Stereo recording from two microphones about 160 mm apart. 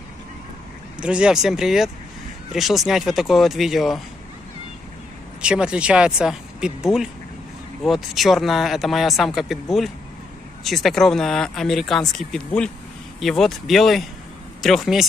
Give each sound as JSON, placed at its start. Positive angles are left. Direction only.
{"t": 1.0, "sound": "speech", "side_deg": -5}
{"t": 5.4, "sound": "speech", "side_deg": -5}